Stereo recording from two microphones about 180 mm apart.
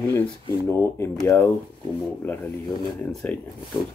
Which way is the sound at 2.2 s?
10° left (ahead or behind).